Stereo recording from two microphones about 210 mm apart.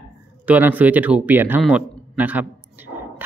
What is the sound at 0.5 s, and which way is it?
A man's voice, 10° right (ahead or behind).